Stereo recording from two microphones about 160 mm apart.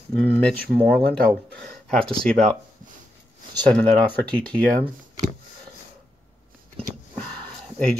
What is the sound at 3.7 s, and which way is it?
Speech, 5° left (ahead or behind).